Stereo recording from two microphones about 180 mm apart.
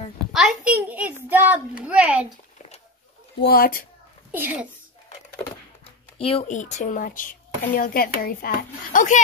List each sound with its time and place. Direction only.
0.2 s a sound: centre (ahead or behind)
3.3 s speech: 60° left (ahead or behind)
4.3 s a child's voice: 10° right (ahead or behind)
6.1 s a woman's voice: 30° left (ahead or behind); by 8.5 s 55° left (ahead or behind)
8.9 s a woman's voice: 45° left (ahead or behind)